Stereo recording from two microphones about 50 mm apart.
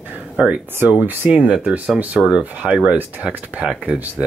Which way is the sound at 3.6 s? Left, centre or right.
Right.